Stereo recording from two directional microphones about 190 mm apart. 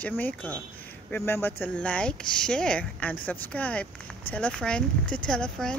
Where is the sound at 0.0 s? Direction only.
10° left (ahead or behind).